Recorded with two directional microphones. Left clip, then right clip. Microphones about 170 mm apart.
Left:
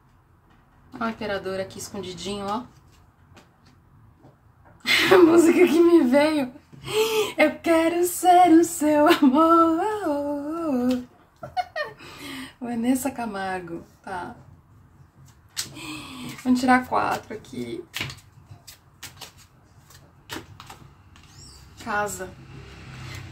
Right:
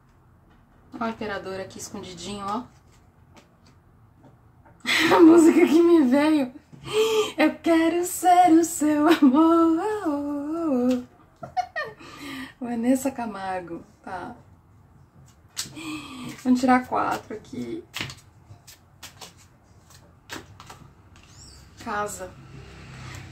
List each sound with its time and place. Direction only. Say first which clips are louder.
0.9 s speech: left 2 dB; 5° left (ahead or behind)
4.8 s a woman's voice: even; 5° left (ahead or behind)
8.2 s music: left 1 dB; 15° right (ahead or behind)
9.0 s humming: even; centre (ahead or behind)
11.5 s a sound: even; 5° left (ahead or behind)
14.0 s speech: left 2 dB; 5° left (ahead or behind)
15.5 s a sound: even; 5° left (ahead or behind)
21.7 s a woman's voice: left 2 dB; 5° left (ahead or behind)